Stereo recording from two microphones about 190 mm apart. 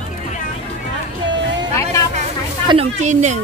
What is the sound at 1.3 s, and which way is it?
Vehicle, 70° right (ahead or behind).